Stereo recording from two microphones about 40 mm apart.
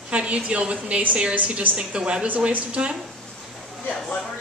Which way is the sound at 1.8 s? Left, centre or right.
Right.